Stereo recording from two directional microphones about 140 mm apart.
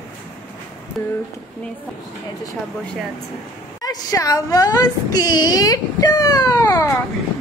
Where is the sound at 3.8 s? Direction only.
25° left (ahead or behind).